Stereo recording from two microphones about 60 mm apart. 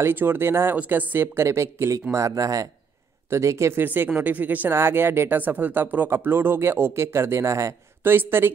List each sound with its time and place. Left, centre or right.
0.0 s speech: right
0.7 s speech: right
1.2 s speech: right
3.3 s speech: right
3.8 s speech: right
4.6 s speech: right
5.4 s speech: right
8.0 s speech: right